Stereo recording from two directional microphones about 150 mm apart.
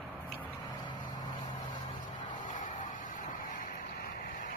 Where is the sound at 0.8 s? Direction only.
30° left (ahead or behind).